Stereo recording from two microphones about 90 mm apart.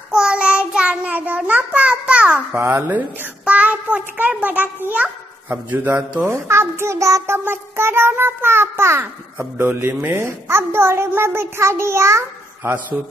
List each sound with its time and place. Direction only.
0.1 s child singing: 10° right (ahead or behind)
2.5 s speech: 30° right (ahead or behind)
2.9 s child singing: 15° right (ahead or behind)
5.5 s a man's voice: 25° right (ahead or behind)
6.2 s a sound: 30° right (ahead or behind)
7.3 s a child's voice: 25° right (ahead or behind)